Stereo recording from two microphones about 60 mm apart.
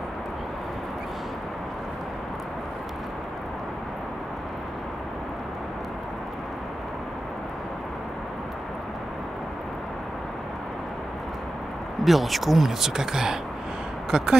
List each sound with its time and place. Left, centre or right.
12.0 s speech: centre